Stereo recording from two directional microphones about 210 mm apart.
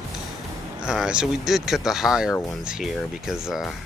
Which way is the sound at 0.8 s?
5° right (ahead or behind).